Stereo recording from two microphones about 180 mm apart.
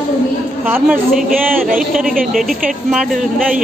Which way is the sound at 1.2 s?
50° right (ahead or behind).